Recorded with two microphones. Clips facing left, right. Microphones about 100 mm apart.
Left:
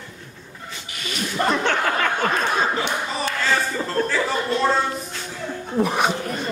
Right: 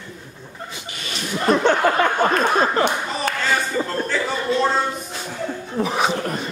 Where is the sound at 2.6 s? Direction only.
50° right (ahead or behind).